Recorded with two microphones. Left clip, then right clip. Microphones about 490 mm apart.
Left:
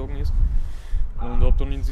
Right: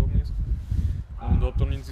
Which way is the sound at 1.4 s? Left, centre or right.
Left.